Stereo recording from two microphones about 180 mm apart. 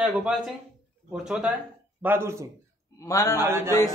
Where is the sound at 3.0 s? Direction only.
20° left (ahead or behind).